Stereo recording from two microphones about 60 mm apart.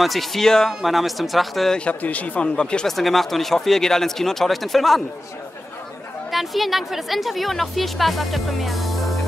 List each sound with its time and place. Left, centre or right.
0.0 s speech: centre
1.9 s speech: left; by 5.0 s centre
6.3 s speech: centre